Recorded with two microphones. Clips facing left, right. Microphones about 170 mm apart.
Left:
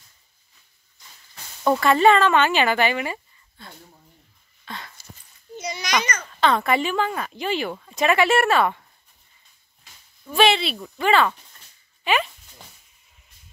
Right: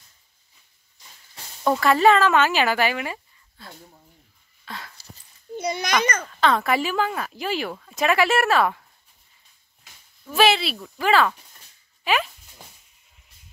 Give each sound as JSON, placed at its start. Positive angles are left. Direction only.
{"t": 1.6, "sound": "speech", "side_deg": 0}
{"t": 4.6, "sound": "dog", "side_deg": 0}
{"t": 5.6, "sound": "a child's voice", "side_deg": -55}
{"t": 6.4, "sound": "speech", "side_deg": 0}
{"t": 10.2, "sound": "speech", "side_deg": -5}
{"t": 12.0, "sound": "a sound", "side_deg": 0}